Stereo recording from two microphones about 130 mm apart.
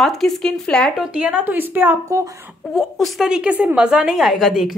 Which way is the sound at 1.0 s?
10° right (ahead or behind).